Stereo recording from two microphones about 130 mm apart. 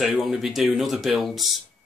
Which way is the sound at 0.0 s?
Centre (ahead or behind).